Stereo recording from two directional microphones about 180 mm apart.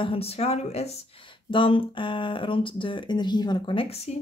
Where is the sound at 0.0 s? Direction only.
30° left (ahead or behind).